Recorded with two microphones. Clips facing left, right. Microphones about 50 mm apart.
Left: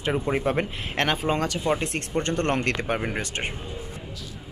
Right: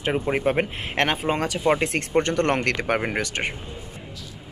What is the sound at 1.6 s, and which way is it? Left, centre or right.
Speech, right.